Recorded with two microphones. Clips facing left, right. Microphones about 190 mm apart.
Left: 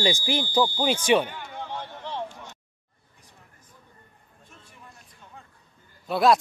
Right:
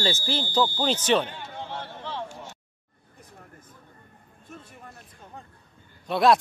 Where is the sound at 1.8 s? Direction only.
15° left (ahead or behind).